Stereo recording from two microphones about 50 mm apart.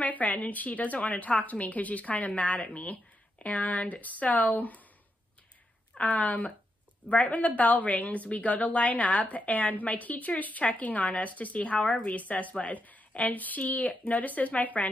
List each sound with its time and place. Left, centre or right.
0.0 s a woman's voice: left
5.9 s a woman's voice: left